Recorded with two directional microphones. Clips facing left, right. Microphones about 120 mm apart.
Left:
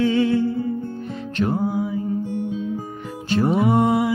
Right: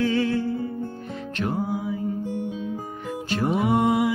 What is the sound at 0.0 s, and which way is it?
Music, 20° left (ahead or behind).